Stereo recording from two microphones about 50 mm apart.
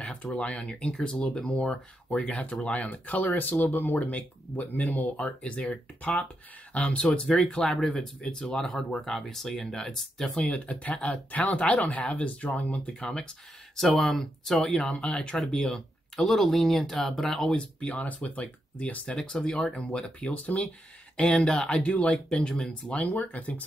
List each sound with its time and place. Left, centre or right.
0.2 s speech: left
5.2 s speech: left
7.4 s speech: centre
10.8 s speech: left
13.8 s speech: centre
14.7 s speech: left
17.6 s speech: left
20.0 s speech: left